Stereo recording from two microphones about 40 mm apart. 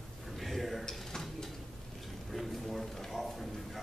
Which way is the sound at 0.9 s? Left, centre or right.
Centre.